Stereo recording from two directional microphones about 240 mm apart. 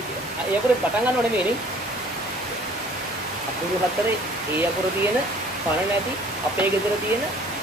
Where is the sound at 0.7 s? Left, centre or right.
Centre.